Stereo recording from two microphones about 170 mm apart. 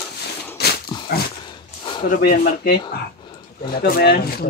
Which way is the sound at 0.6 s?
70° left (ahead or behind).